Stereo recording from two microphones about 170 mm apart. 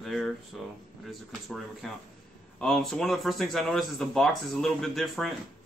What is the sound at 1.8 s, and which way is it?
Speech, centre (ahead or behind).